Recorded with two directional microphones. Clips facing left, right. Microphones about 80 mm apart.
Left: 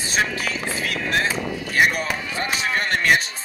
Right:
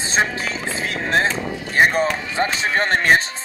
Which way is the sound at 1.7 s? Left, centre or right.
Right.